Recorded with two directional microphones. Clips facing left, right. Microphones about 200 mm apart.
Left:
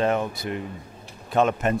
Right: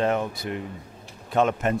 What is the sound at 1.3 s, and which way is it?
Speech, 20° left (ahead or behind).